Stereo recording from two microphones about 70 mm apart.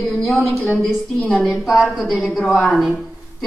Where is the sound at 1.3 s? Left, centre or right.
Centre.